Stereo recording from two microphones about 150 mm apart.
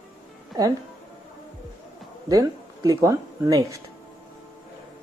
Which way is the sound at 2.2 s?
25° right (ahead or behind).